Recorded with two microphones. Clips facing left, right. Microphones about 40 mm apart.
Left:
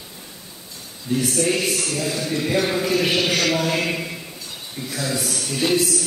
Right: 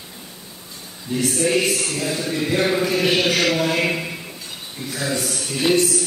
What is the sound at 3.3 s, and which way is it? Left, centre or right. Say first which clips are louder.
Speech: right 1 dB; centre.